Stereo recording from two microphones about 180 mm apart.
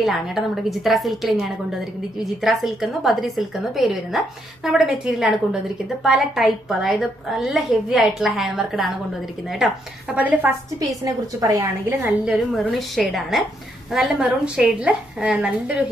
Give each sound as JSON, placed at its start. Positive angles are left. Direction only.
{"t": 0.0, "sound": "a woman's voice", "side_deg": 0}
{"t": 10.8, "sound": "a woman's voice", "side_deg": -20}
{"t": 12.3, "sound": "a woman's voice", "side_deg": 0}